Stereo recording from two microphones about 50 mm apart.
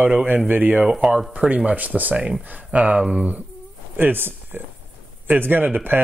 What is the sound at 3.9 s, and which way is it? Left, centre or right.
Speech, right.